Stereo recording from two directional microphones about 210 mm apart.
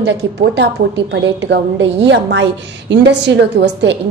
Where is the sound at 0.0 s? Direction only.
50° right (ahead or behind).